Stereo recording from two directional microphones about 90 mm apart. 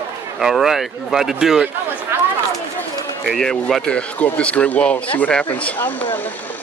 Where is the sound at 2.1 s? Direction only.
25° right (ahead or behind).